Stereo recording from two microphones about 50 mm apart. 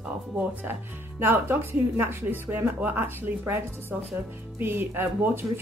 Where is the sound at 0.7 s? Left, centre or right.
Right.